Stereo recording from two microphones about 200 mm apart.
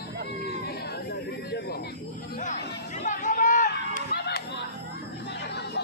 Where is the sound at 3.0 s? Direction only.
40° left (ahead or behind).